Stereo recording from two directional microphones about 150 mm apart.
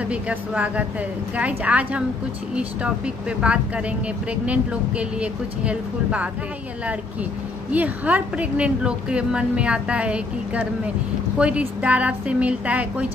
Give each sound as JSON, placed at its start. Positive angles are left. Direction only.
{"t": 0.1, "sound": "a woman's voice", "side_deg": -10}
{"t": 7.7, "sound": "a woman's voice", "side_deg": -10}